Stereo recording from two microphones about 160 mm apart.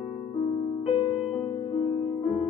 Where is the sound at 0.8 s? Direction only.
40° left (ahead or behind).